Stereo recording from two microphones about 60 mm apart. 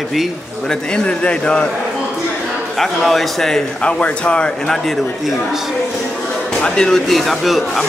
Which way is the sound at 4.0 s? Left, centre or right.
Centre.